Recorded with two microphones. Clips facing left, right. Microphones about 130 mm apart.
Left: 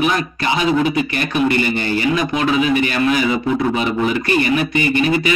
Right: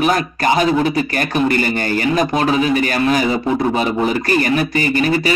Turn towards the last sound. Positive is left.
turn(degrees=-40)  # may be behind; listen again after turning